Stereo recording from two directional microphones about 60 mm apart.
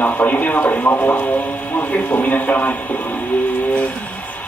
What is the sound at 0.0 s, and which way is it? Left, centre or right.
Speech, left.